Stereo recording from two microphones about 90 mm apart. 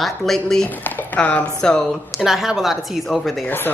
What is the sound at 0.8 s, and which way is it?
Speech, 15° left (ahead or behind).